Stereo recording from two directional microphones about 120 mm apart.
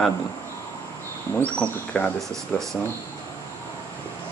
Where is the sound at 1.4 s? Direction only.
10° left (ahead or behind).